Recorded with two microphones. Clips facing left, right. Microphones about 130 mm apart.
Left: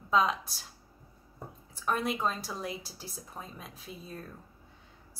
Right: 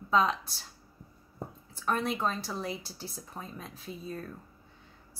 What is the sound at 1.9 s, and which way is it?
Speech, 10° left (ahead or behind).